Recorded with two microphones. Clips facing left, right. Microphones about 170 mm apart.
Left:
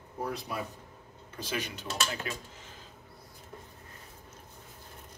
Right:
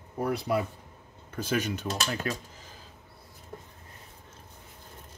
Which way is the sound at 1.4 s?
45° right (ahead or behind).